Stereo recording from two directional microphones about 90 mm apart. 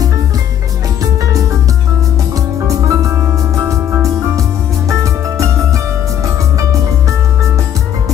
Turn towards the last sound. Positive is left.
turn(degrees=-40)  # may be behind; listen again after turning